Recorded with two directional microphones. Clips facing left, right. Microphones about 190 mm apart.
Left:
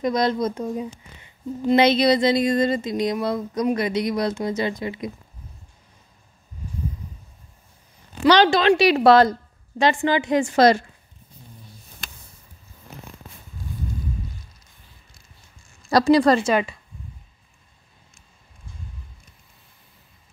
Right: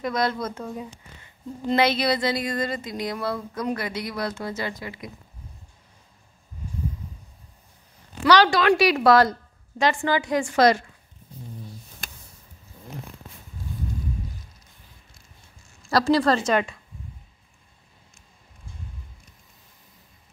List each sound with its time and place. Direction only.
0.0 s speech: 20° left (ahead or behind)
8.2 s speech: 25° left (ahead or behind)
15.9 s a woman's voice: 15° left (ahead or behind)